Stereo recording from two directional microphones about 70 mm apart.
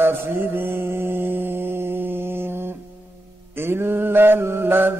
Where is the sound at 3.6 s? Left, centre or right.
Right.